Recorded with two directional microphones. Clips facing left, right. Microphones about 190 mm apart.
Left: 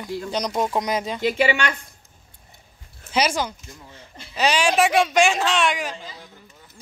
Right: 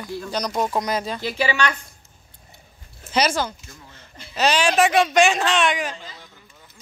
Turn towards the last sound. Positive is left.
turn(degrees=5)  # may be behind; listen again after turning